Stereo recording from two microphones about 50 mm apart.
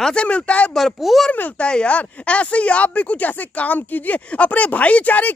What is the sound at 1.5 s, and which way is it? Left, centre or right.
Speech, left.